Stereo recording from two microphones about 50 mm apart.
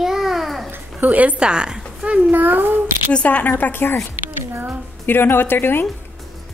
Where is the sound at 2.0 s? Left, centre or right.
Right.